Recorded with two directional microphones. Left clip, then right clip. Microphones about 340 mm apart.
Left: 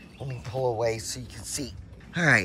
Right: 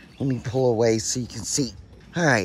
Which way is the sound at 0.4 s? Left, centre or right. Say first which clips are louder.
Right 5 dB; right.